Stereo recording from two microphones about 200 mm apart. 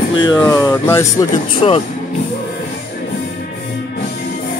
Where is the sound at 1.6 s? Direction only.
25° left (ahead or behind).